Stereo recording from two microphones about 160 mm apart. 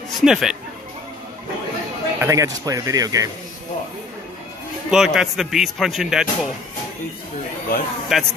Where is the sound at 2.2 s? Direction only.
20° right (ahead or behind).